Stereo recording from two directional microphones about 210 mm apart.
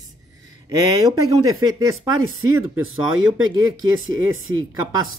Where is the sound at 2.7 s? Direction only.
70° right (ahead or behind).